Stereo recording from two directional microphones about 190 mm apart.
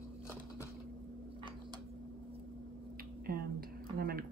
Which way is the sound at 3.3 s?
50° right (ahead or behind).